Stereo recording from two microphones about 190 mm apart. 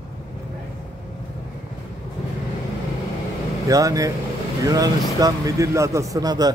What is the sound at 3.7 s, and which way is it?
A man's voice, 20° right (ahead or behind).